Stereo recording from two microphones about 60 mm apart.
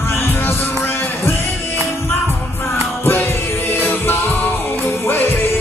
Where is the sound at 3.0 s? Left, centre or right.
Left.